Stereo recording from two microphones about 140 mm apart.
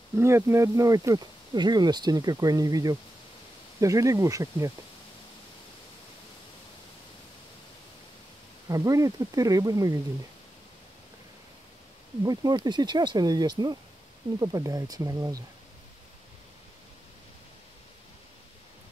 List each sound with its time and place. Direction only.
0.1 s speech: 20° right (ahead or behind)
8.6 s speech: 25° right (ahead or behind)
12.2 s speech: 30° right (ahead or behind)